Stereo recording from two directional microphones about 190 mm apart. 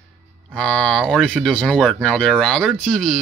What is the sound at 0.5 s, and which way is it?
Speech, 5° left (ahead or behind).